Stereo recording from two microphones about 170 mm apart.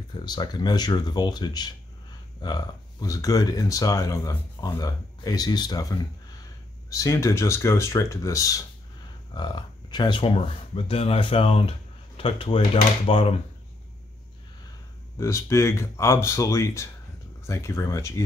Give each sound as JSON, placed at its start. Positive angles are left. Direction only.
{"t": 0.2, "sound": "speech", "side_deg": 25}
{"t": 15.1, "sound": "speech", "side_deg": 15}